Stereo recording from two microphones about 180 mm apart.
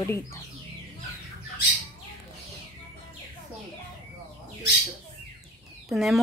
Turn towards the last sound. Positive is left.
turn(degrees=0)  # may be behind; listen again after turning